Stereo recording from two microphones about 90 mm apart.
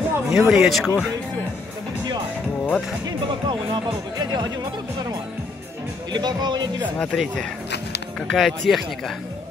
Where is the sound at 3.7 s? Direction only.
55° right (ahead or behind).